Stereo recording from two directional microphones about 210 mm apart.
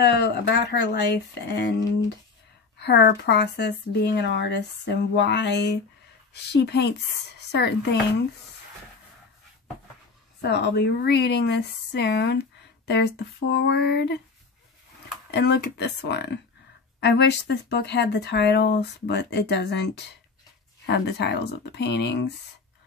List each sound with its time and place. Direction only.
0.0 s speech: 55° left (ahead or behind)
2.8 s speech: 55° left (ahead or behind)
10.4 s speech: 55° left (ahead or behind)
15.3 s speech: 50° left (ahead or behind)